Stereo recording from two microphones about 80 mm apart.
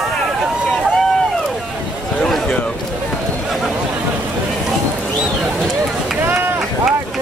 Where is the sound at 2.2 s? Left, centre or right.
Centre.